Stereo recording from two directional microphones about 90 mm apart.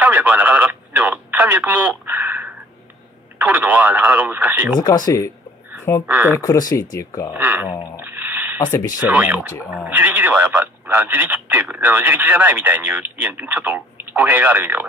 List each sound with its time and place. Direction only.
0.0 s radio: 20° right (ahead or behind)
3.3 s speech: 20° right (ahead or behind)
4.7 s speech: 45° left (ahead or behind)
6.0 s speech: 20° right (ahead or behind)
6.4 s speech: 40° left (ahead or behind)
7.3 s speech: 20° right (ahead or behind)
7.7 s speech: 40° left (ahead or behind)
8.0 s a sound: 20° right (ahead or behind)
9.0 s speech: 20° right (ahead or behind)